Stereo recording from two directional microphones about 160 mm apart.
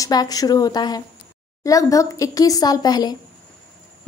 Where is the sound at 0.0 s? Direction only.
25° left (ahead or behind).